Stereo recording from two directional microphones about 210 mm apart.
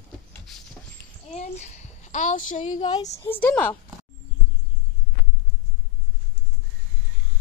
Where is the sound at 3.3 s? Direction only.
5° left (ahead or behind).